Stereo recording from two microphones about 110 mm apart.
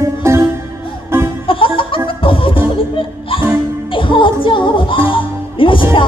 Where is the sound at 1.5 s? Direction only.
50° left (ahead or behind).